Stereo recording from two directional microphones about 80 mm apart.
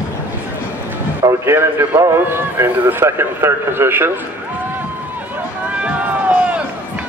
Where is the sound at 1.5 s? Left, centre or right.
Right.